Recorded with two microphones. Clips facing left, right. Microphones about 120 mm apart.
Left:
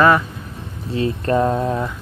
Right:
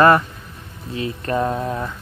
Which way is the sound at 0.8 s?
30° left (ahead or behind).